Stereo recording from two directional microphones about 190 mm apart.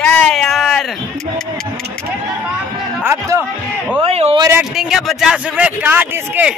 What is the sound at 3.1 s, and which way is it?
Speech, 10° right (ahead or behind).